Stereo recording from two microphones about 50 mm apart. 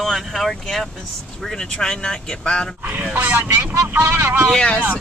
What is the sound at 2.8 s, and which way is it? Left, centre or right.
Speech, right.